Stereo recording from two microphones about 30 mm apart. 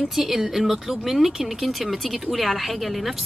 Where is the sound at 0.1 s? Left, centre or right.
Centre.